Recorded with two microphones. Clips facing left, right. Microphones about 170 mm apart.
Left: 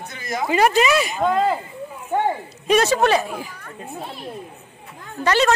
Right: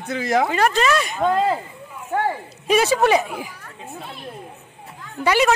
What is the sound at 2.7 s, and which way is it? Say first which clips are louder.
Speech: even; 5° right (ahead or behind).